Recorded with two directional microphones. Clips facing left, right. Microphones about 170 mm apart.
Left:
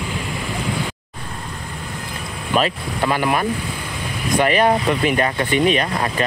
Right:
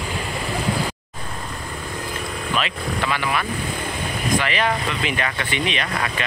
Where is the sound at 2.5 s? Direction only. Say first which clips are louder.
Left 6 dB; 40° left (ahead or behind).